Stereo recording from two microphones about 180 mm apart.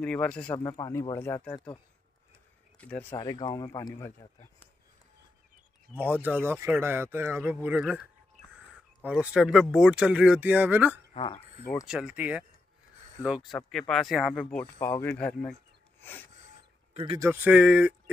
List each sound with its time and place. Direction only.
0.0 s speech: 5° left (ahead or behind)
0.7 s speech: 20° left (ahead or behind)
2.8 s speech: 10° left (ahead or behind)
3.2 s speech: 25° left (ahead or behind)
5.9 s speech: 10° right (ahead or behind)
9.0 s speech: 5° right (ahead or behind)
11.1 s speech: 30° left (ahead or behind)
11.8 s speech: 5° right (ahead or behind)
13.5 s speech: centre (ahead or behind)
16.0 s a sound: 10° left (ahead or behind)
16.9 s speech: 30° right (ahead or behind)
17.2 s speech: 10° right (ahead or behind)